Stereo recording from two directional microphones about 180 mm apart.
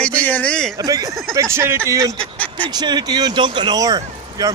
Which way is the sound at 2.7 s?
25° right (ahead or behind).